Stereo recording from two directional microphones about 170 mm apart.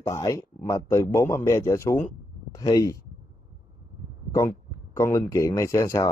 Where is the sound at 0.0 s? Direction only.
20° left (ahead or behind).